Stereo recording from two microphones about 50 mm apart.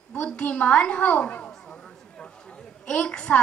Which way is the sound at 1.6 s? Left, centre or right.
Centre.